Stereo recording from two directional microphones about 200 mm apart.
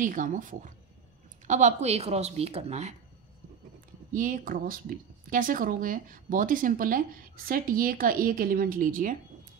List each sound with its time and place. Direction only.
0.0 s a woman's voice: 40° right (ahead or behind)
4.1 s speech: 40° right (ahead or behind)